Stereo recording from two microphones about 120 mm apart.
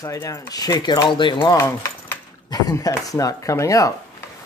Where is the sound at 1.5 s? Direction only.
20° left (ahead or behind).